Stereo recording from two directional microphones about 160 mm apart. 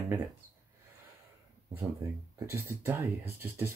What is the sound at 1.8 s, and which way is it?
Speech, 15° right (ahead or behind).